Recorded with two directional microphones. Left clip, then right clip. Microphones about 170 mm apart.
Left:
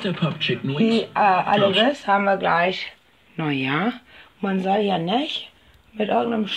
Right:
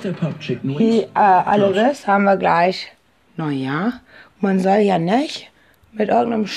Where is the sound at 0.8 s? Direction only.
55° right (ahead or behind).